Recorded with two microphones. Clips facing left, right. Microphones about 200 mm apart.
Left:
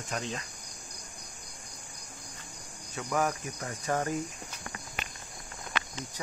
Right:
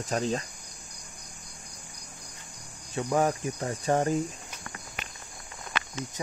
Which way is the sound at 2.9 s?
30° right (ahead or behind).